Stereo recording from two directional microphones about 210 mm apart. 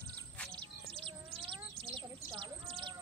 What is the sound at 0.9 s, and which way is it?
Bird, 25° right (ahead or behind).